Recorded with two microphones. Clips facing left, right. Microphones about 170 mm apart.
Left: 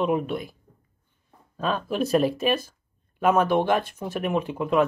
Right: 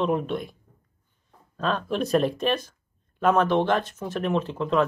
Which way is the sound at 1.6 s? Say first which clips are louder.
Even; 5° left (ahead or behind).